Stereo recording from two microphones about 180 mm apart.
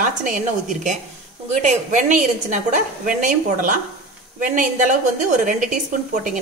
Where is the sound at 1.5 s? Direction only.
40° right (ahead or behind).